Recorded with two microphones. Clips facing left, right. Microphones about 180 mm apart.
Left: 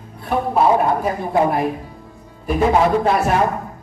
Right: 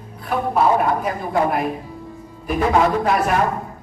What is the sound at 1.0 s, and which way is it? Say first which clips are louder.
A man's voice: left 2 dB; 25° left (ahead or behind).